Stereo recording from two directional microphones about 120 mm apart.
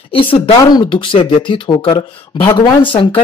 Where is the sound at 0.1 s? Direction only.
50° left (ahead or behind).